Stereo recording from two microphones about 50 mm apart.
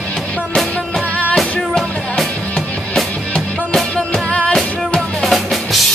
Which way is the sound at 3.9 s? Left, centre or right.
Centre.